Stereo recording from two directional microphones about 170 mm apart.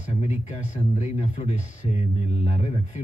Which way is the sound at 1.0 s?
40° left (ahead or behind).